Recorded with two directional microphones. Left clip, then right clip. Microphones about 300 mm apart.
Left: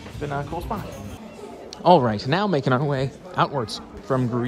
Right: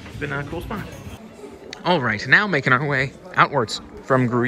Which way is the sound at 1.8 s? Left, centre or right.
Centre.